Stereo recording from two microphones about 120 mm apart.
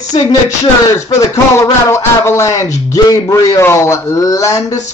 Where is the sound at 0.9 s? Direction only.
30° left (ahead or behind).